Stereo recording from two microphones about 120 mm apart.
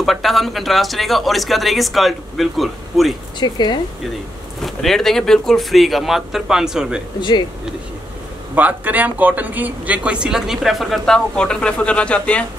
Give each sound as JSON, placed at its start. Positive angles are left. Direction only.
{"t": 0.0, "sound": "speech", "side_deg": 0}
{"t": 3.3, "sound": "speech", "side_deg": 40}
{"t": 4.6, "sound": "speech", "side_deg": 0}
{"t": 7.2, "sound": "speech", "side_deg": 40}
{"t": 8.5, "sound": "speech", "side_deg": -15}